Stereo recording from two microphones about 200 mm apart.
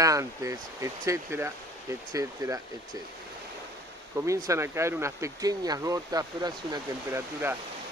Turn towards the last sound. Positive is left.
turn(degrees=-10)  # may be behind; listen again after turning